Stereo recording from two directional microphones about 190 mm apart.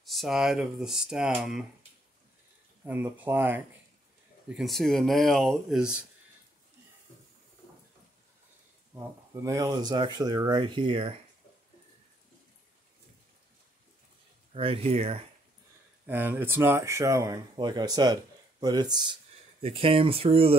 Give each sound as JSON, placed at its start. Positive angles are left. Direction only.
{"t": 0.0, "sound": "speech", "side_deg": 0}
{"t": 2.8, "sound": "speech", "side_deg": -10}
{"t": 8.9, "sound": "speech", "side_deg": -15}
{"t": 14.5, "sound": "speech", "side_deg": -30}
{"t": 16.1, "sound": "speech", "side_deg": -10}